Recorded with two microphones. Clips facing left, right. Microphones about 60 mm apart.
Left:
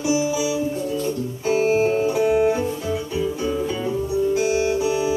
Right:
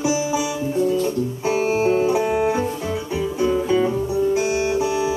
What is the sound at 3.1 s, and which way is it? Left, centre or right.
Music, right.